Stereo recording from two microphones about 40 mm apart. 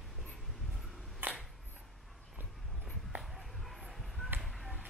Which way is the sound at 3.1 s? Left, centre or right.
Right.